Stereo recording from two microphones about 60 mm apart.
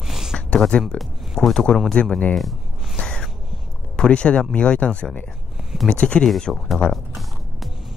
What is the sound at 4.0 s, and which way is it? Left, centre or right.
Speech, centre.